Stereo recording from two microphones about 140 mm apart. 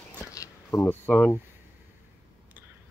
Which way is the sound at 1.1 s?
10° left (ahead or behind).